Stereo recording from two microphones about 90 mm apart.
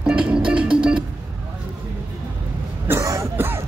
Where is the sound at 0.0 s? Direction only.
10° right (ahead or behind).